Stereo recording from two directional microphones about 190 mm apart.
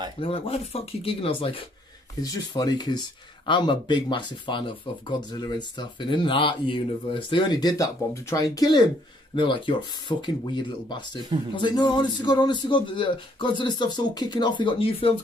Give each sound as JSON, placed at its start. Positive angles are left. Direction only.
{"t": 0.2, "sound": "speech", "side_deg": 30}